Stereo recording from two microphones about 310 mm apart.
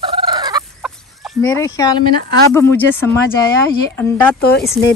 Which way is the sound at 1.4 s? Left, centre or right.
Centre.